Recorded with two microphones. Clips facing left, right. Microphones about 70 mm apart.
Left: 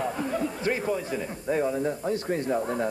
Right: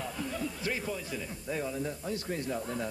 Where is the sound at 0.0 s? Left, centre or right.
Left.